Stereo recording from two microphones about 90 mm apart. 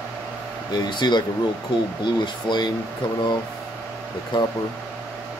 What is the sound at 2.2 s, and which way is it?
Speech, 55° left (ahead or behind).